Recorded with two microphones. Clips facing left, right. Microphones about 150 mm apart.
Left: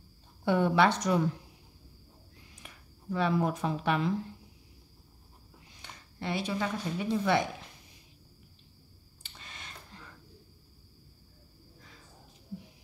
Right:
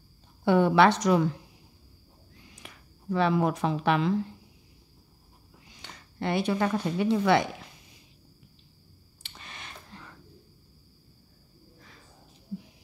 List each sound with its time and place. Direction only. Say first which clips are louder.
0.5 s a woman's voice: right 5 dB; 75° right (ahead or behind)
2.5 s speech: right 3 dB; 80° right
5.8 s a woman's voice: right 6 dB; 65° right (ahead or behind); by 7.4 s 80° right
9.2 s a sound: right 3 dB; 75° right (ahead or behind)